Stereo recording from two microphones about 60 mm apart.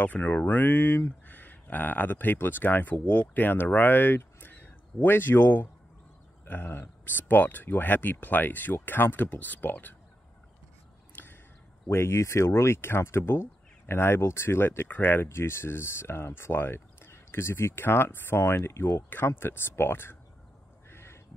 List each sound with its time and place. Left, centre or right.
0.0 s speech: left
4.2 s a sound: left
6.4 s speech: left
11.2 s a sound: left
11.9 s speech: left
15.2 s speech: left
20.9 s duck: left